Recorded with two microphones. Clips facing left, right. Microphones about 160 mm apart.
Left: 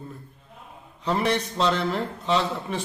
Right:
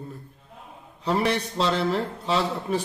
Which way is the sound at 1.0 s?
5° right (ahead or behind).